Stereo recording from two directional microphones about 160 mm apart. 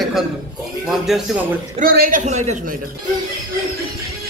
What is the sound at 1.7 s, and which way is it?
Speech, 65° right (ahead or behind).